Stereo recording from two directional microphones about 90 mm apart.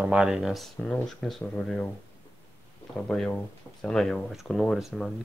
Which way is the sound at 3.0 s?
5° left (ahead or behind).